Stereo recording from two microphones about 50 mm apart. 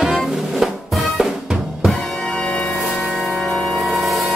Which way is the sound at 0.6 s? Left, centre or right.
Centre.